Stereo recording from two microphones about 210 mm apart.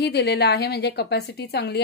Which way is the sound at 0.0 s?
50° left (ahead or behind).